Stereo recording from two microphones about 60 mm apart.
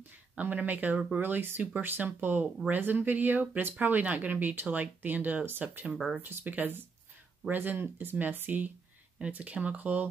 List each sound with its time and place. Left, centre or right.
0.4 s speech: right